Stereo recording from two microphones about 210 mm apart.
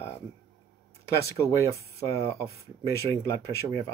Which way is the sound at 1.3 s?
15° left (ahead or behind).